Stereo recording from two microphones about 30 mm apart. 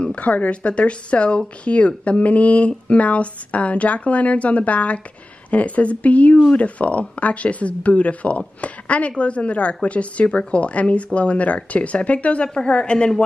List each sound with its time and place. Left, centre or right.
0.0 s a woman's voice: left
12.7 s a woman's voice: left